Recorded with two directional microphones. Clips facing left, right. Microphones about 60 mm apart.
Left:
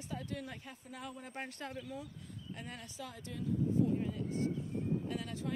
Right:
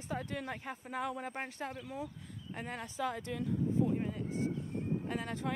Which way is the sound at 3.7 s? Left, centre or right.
Right.